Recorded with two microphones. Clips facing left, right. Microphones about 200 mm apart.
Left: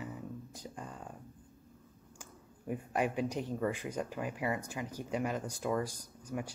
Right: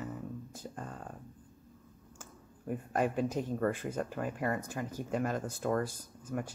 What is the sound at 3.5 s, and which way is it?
Speech, 10° left (ahead or behind).